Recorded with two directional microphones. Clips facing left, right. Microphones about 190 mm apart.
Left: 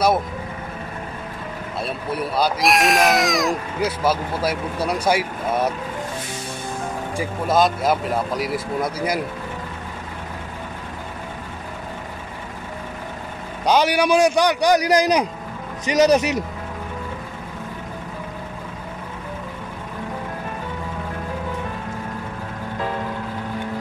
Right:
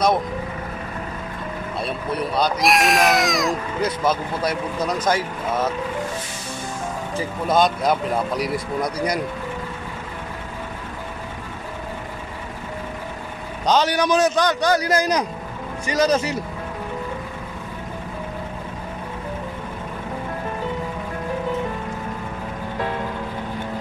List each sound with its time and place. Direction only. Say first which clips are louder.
1.8 s speech: even; centre (ahead or behind)
7.2 s speech: even; 5° left (ahead or behind)
13.7 s a man's voice: left 1 dB; 10° left (ahead or behind)